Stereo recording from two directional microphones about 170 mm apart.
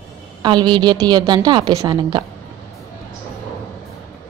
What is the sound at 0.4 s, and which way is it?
Speech, 25° right (ahead or behind).